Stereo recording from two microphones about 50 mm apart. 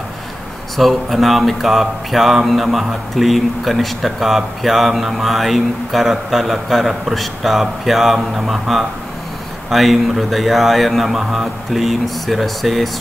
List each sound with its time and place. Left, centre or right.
0.7 s mantra: centre